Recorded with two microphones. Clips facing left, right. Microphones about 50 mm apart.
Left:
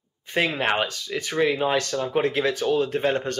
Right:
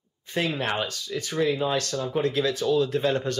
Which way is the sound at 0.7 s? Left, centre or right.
Left.